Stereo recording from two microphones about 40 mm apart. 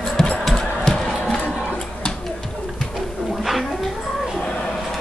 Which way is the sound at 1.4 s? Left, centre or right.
Left.